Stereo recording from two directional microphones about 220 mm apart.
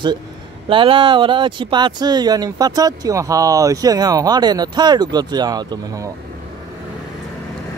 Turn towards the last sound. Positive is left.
turn(degrees=-15)  # may be behind; listen again after turning